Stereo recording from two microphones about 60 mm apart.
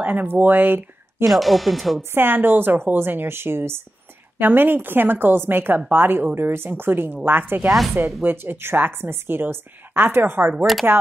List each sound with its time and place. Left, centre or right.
0.0 s a woman's voice: right
1.2 s speech: centre
2.1 s a woman's voice: right